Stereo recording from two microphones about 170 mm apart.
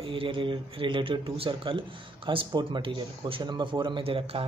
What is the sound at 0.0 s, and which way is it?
Speech, 30° right (ahead or behind).